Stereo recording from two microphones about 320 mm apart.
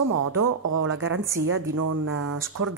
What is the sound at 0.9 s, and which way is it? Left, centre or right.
Speech, right.